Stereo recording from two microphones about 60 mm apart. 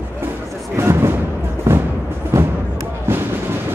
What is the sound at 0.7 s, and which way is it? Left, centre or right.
Music, right.